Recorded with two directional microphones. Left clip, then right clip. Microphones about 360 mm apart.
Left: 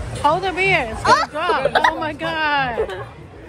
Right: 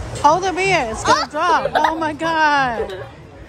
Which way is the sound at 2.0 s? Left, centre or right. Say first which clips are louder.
Right 4 dB; centre.